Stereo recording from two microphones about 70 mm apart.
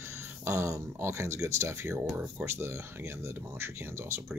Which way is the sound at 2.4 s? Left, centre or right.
Right.